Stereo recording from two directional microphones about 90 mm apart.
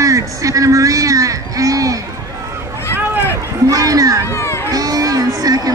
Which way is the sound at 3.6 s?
40° right (ahead or behind).